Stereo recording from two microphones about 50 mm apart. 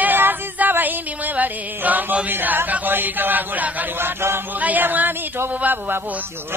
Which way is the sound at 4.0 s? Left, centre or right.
Right.